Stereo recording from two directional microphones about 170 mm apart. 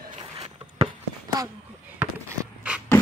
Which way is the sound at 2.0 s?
5° right (ahead or behind).